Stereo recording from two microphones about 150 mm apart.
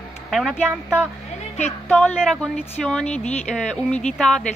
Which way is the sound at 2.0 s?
5° left (ahead or behind).